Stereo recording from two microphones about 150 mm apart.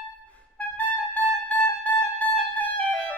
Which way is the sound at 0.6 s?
10° left (ahead or behind).